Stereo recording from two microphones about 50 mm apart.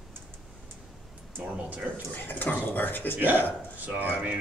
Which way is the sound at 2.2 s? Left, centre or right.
Left.